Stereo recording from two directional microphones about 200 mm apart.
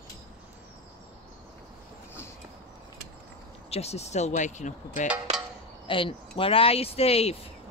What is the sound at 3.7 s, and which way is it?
Speech, 30° left (ahead or behind).